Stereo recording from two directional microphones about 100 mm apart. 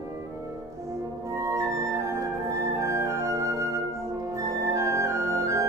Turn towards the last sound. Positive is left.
turn(degrees=-30)  # may be behind; listen again after turning